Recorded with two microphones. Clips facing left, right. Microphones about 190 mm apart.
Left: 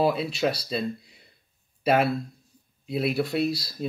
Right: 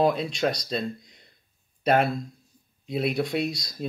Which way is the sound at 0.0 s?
5° left (ahead or behind).